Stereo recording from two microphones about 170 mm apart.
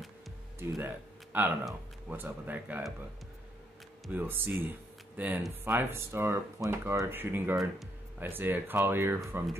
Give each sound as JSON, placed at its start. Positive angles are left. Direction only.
{"t": 0.6, "sound": "speech", "side_deg": -15}
{"t": 4.1, "sound": "speech", "side_deg": -10}